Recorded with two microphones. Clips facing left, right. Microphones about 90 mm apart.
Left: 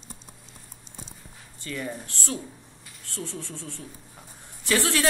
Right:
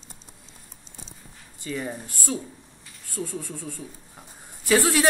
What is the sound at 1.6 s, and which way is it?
Speech, 15° right (ahead or behind).